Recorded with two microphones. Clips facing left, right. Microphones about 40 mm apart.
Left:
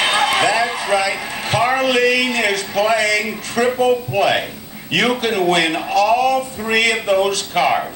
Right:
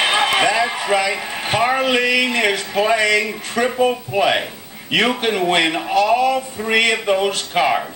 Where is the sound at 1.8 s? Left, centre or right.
Right.